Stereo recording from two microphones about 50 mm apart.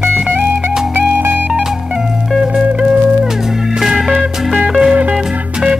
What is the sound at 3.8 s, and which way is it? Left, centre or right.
Music, centre.